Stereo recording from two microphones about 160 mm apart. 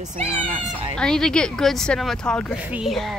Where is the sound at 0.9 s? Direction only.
5° left (ahead or behind).